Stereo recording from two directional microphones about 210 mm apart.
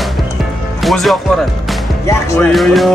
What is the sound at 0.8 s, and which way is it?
Speech, centre (ahead or behind).